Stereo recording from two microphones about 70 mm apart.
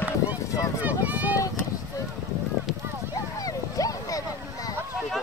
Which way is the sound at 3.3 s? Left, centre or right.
Left.